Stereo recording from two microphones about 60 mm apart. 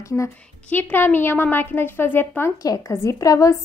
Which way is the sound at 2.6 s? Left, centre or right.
Left.